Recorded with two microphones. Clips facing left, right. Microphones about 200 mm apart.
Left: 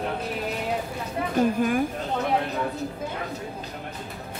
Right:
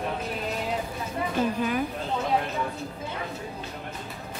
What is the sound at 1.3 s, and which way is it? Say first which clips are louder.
Speech: left 5 dB; 50° left (ahead or behind).